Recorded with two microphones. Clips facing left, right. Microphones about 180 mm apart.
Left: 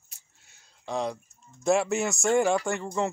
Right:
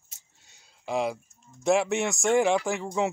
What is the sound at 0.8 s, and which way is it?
Speech, 5° right (ahead or behind).